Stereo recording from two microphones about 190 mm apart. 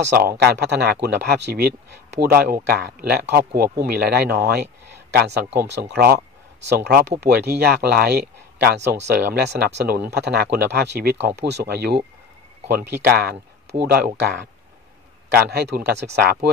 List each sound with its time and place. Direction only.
0.1 s speech: 55° right (ahead or behind)
13.1 s speech: 55° right (ahead or behind)
15.3 s speech: 55° right (ahead or behind)